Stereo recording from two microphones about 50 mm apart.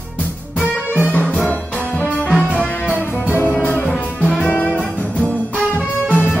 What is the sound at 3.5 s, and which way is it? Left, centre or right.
Music, centre.